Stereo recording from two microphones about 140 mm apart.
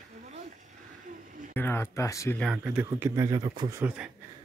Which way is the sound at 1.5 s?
15° left (ahead or behind).